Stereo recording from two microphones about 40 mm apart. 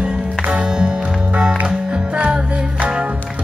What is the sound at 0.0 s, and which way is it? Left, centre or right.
Music, right.